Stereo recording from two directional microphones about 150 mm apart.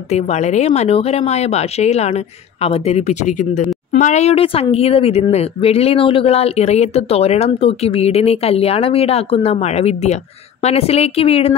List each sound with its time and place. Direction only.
0.1 s a woman's voice: 50° left (ahead or behind)